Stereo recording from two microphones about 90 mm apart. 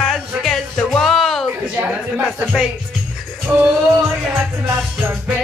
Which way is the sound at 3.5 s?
15° right (ahead or behind).